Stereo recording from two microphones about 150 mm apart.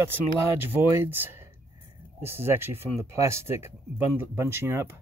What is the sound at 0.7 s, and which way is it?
Speech, 15° right (ahead or behind).